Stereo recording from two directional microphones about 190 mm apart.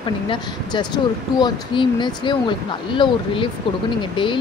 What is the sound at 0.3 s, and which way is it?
Speech, 25° left (ahead or behind).